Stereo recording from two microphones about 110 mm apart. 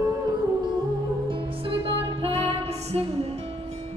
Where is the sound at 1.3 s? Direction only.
55° right (ahead or behind); by 3.7 s 75° right (ahead or behind).